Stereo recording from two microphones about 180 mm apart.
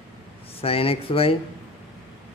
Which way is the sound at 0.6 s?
30° left (ahead or behind).